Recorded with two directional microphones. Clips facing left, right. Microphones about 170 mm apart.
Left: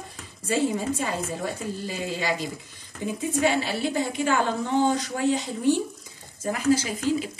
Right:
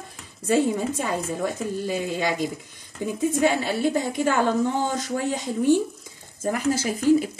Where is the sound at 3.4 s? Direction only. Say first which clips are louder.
Right 1 dB; 50° right (ahead or behind).